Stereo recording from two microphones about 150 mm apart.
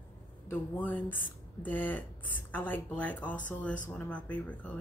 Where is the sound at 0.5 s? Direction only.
10° left (ahead or behind).